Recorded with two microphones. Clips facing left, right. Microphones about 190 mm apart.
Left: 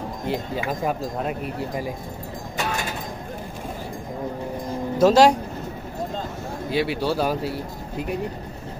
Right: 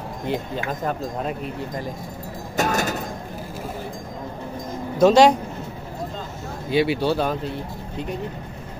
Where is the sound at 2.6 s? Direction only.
45° right (ahead or behind).